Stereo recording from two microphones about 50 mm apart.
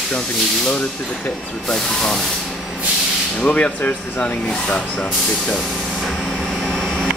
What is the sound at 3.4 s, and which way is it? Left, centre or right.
Speech, left.